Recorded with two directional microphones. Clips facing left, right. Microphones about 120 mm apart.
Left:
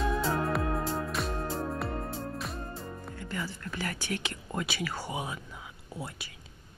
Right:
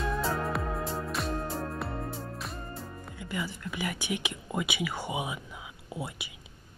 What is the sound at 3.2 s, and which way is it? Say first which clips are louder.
Speech: right 3 dB; 15° right (ahead or behind).